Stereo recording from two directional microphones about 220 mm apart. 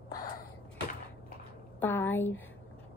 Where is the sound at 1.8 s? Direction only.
10° left (ahead or behind).